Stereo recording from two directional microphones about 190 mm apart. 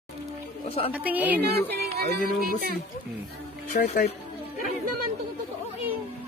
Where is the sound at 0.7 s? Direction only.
30° left (ahead or behind).